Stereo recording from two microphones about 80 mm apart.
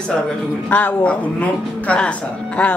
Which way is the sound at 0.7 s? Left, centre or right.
Left.